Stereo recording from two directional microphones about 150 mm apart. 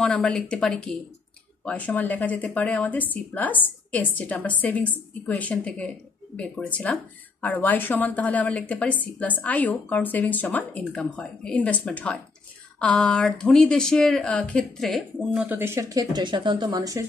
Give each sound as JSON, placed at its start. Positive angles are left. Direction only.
{"t": 0.0, "sound": "speech", "side_deg": 5}
{"t": 15.4, "sound": "speech", "side_deg": -15}